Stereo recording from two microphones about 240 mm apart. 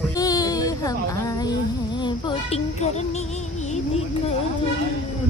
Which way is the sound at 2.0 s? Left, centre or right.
Left.